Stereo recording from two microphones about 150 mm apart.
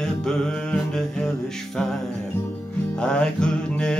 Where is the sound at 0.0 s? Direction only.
5° left (ahead or behind).